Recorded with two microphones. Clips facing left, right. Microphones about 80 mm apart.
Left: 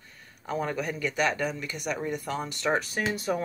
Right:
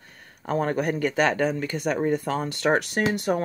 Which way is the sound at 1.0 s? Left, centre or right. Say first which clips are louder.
Right 4 dB; right.